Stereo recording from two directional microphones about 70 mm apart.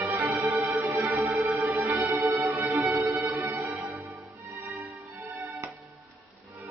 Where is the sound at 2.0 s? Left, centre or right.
Right.